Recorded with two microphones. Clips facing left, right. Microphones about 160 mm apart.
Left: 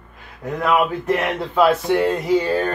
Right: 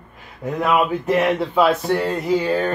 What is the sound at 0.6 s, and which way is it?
Speech, centre (ahead or behind).